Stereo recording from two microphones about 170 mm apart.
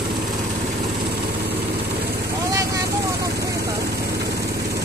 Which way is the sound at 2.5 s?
20° right (ahead or behind).